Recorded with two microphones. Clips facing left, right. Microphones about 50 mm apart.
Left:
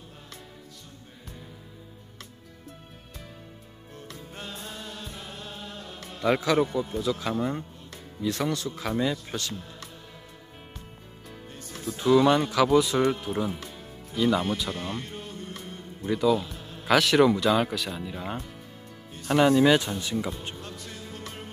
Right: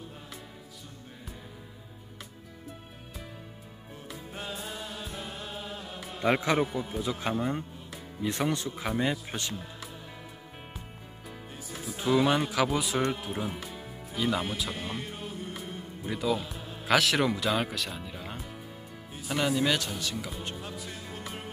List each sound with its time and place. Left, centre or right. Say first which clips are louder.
4.1 s music: right 2 dB; centre
6.2 s a man's voice: left 3 dB; right
7.3 s speech: left 2 dB; centre
8.2 s a man's voice: left 2 dB; right
11.2 s music: even; centre
13.1 s speech: left 4 dB; centre
19.3 s speech: left 8 dB; centre
20.5 s music: right 1 dB; centre